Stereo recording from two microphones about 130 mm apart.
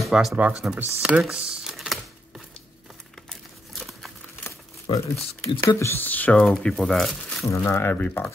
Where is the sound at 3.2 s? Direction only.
Centre (ahead or behind).